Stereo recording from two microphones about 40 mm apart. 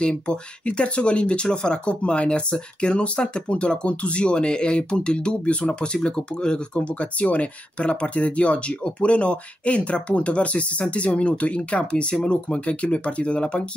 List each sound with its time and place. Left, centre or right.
0.0 s speech: left